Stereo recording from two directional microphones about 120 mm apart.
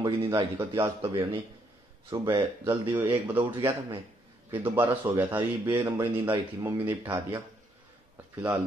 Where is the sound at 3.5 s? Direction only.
40° right (ahead or behind).